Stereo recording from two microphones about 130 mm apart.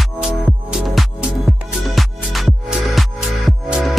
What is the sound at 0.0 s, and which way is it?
Music, centre (ahead or behind).